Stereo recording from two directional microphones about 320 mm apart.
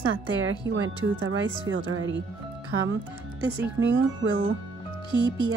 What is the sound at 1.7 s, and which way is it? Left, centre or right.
Speech, right.